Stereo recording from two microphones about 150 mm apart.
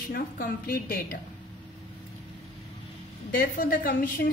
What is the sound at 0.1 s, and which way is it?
A woman's voice, 80° left.